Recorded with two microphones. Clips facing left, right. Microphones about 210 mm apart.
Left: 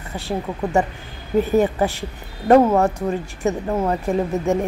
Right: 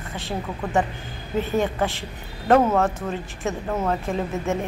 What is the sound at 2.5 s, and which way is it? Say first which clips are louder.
A woman's voice: left 4 dB; 15° left (ahead or behind).